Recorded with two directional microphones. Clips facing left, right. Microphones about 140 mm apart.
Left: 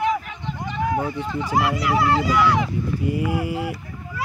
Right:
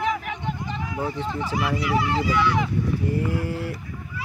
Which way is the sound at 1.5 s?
90° left.